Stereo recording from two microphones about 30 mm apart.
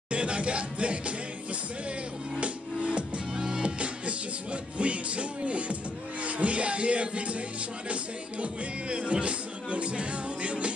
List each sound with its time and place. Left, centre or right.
0.1 s music: right
3.3 s music: right
3.6 s music: right